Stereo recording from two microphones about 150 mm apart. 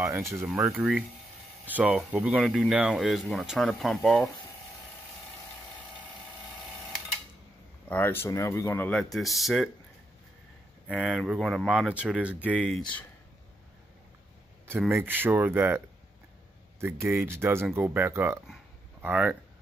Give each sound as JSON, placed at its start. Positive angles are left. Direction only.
{"t": 0.3, "sound": "speech", "side_deg": 0}
{"t": 7.9, "sound": "speech", "side_deg": 15}
{"t": 10.9, "sound": "speech", "side_deg": 0}
{"t": 14.9, "sound": "speech", "side_deg": -15}
{"t": 16.8, "sound": "speech", "side_deg": -15}
{"t": 18.5, "sound": "a sound", "side_deg": -10}